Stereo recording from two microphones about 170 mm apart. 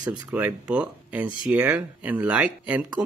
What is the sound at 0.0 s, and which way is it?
Speech, 25° right (ahead or behind).